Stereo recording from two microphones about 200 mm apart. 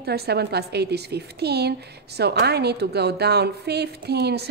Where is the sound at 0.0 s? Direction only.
55° right (ahead or behind).